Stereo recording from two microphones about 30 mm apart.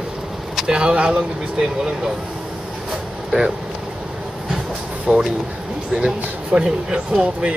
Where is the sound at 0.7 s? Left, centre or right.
Right.